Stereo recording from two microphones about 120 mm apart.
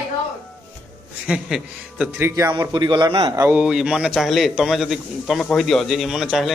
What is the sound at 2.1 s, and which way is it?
Speech, 20° right (ahead or behind).